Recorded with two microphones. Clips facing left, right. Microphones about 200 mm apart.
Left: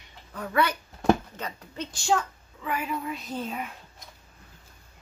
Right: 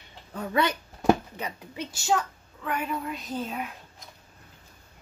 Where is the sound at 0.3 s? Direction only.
25° right (ahead or behind).